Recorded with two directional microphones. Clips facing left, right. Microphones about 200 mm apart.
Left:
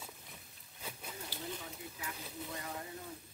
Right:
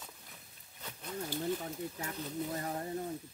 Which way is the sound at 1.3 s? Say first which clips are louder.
Right 10 dB; 45° right (ahead or behind).